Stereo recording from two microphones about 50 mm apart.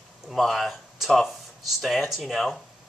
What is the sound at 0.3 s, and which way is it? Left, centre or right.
Speech, centre.